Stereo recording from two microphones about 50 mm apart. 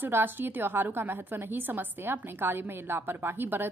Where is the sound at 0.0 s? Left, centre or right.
Right.